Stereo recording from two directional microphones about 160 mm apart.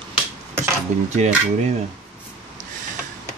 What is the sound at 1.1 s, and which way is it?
Speech, 45° right (ahead or behind).